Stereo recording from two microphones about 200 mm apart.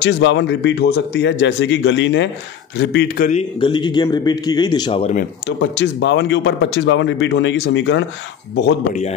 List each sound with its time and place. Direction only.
0.0 s speech: 65° left (ahead or behind)
3.5 s a man's voice: 20° left (ahead or behind)
5.6 s speech: 60° left (ahead or behind)